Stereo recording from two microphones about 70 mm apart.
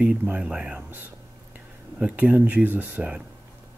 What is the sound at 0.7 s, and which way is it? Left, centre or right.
Speech, right.